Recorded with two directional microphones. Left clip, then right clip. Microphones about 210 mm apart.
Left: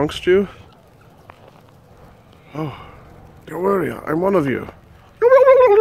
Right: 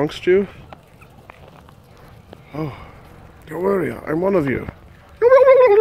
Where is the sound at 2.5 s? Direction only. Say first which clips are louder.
Left 1 dB; centre (ahead or behind).